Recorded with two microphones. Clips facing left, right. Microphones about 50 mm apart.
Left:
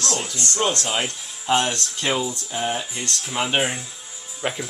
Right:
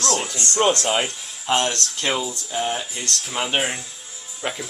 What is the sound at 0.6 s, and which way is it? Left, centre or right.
Speech, centre.